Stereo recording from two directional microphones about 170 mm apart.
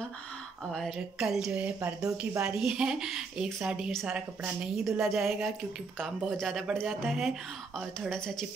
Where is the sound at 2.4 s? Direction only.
5° right (ahead or behind).